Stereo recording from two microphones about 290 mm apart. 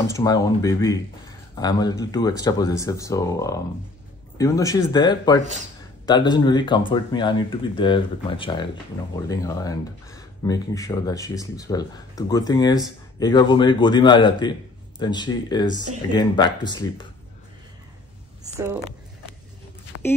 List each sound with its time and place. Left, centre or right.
0.0 s speech: centre